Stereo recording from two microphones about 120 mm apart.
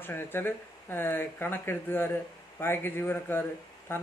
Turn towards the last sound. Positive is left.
turn(degrees=15)  # may be behind; listen again after turning